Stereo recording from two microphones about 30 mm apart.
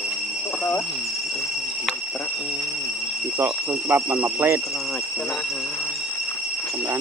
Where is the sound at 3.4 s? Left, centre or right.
Right.